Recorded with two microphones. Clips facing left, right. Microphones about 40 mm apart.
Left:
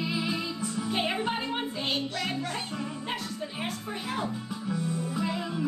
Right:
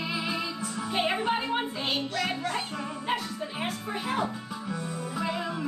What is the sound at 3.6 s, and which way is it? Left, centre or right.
Music, centre.